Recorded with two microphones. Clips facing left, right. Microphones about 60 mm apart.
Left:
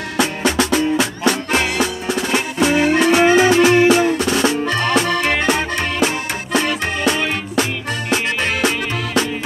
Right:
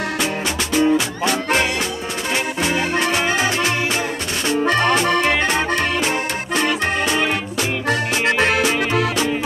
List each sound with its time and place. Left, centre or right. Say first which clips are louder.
0.2 s music: left 5 dB; left
2.7 s music: left 7 dB; centre; by 4.1 s left
4.7 s music: right 1 dB; right